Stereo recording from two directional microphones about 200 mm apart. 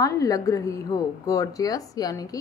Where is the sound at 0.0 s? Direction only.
15° left (ahead or behind).